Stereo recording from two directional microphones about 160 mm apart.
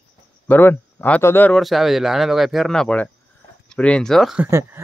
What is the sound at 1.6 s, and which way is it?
Speech, centre (ahead or behind).